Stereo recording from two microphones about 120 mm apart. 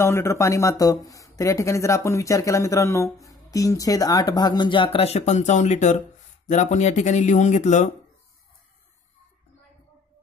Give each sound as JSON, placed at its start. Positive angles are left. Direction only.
{"t": 0.0, "sound": "speech", "side_deg": 20}